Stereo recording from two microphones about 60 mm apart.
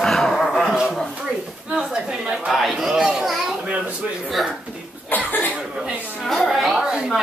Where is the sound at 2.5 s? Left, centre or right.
Centre.